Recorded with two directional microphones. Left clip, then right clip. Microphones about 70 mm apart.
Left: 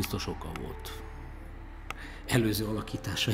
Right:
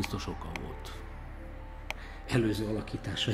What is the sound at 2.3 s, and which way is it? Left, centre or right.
A man's voice, left.